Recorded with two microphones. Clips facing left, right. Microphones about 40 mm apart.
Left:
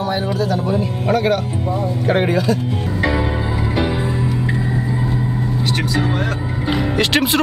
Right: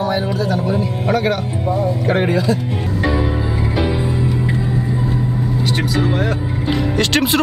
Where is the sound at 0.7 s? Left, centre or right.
Centre.